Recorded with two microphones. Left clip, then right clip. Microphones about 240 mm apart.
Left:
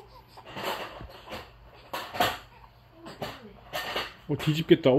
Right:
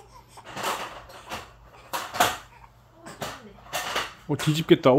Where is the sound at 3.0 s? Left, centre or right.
Centre.